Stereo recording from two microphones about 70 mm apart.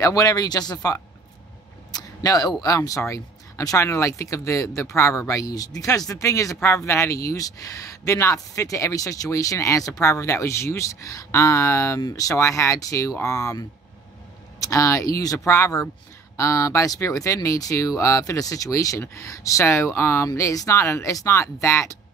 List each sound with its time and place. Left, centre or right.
0.0 s speech: left
1.9 s a sound: left
2.6 s speech: left
20.3 s speech: left
21.3 s speech: left